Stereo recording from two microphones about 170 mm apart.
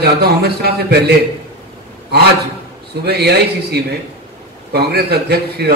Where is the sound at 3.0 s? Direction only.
75° right (ahead or behind).